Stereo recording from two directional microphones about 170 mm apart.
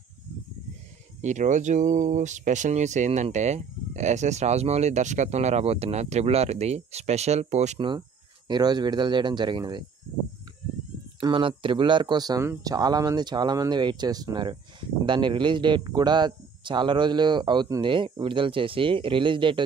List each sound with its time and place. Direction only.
1.2 s speech: 45° right (ahead or behind)
8.5 s speech: 25° right (ahead or behind)
11.1 s speech: 30° right (ahead or behind)